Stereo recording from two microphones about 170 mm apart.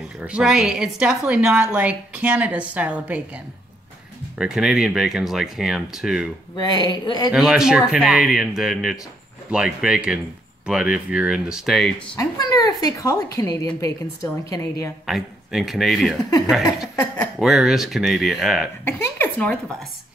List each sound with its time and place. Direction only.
0.0 s a woman's voice: 5° right (ahead or behind)
4.4 s speech: 5° right (ahead or behind)
6.5 s a woman's voice: 25° left (ahead or behind)
7.3 s a woman's voice: 5° right (ahead or behind)
12.2 s a woman's voice: 20° left (ahead or behind)
15.0 s speech: centre (ahead or behind)
16.9 s a woman's voice: 15° left (ahead or behind)
17.4 s speech: centre (ahead or behind)
18.9 s a woman's voice: 10° left (ahead or behind)